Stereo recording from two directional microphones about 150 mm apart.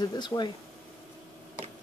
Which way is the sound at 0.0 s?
30° left (ahead or behind).